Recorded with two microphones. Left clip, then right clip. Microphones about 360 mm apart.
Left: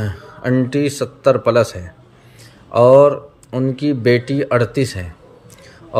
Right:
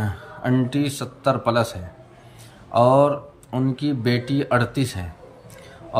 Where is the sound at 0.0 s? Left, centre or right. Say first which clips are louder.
Left 4 dB; centre.